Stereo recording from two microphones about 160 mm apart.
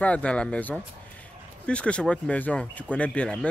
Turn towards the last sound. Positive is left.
turn(degrees=5)  # may be behind; listen again after turning